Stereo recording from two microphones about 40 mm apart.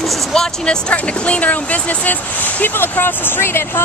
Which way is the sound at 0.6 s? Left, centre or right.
Left.